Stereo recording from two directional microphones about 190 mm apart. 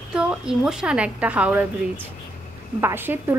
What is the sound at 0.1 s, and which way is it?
Speech, 5° right (ahead or behind).